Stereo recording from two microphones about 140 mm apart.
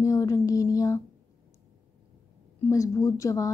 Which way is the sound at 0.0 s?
25° left (ahead or behind).